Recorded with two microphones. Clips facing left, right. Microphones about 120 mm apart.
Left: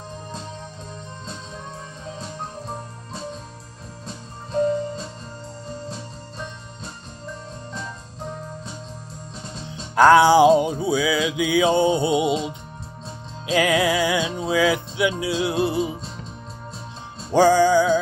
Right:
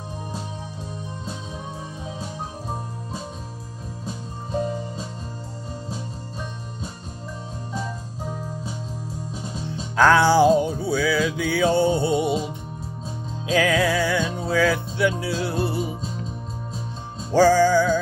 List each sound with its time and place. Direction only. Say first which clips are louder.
4.0 s music: right 3 dB; 5° right (ahead or behind)
9.9 s music: left 3 dB; 15° left (ahead or behind)
13.5 s music: left 1 dB; 10° left (ahead or behind)
14.5 s speech: left 1 dB; 15° left (ahead or behind)
15.4 s music: left 4 dB; 20° left (ahead or behind)
17.3 s music: left 1 dB; 15° left (ahead or behind)